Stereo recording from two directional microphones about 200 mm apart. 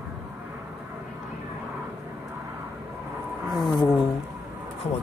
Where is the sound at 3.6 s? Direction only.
20° left (ahead or behind).